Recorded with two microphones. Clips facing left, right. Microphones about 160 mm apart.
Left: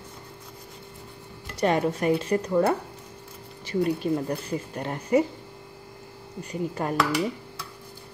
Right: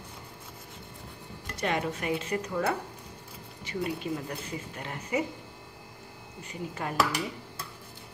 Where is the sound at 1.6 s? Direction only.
40° left (ahead or behind).